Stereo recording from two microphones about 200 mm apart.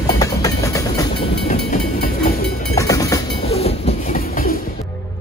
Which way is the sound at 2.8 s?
15° left (ahead or behind).